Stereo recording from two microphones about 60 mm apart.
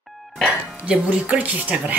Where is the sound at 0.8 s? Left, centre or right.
Right.